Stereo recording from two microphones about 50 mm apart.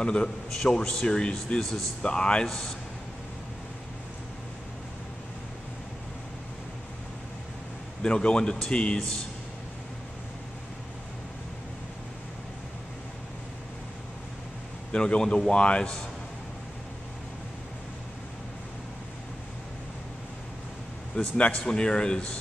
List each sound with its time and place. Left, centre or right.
0.0 s a man's voice: centre
1.6 s a man's voice: centre
2.0 s a man's voice: centre
8.0 s a man's voice: centre
14.9 s a man's voice: centre
21.2 s a man's voice: left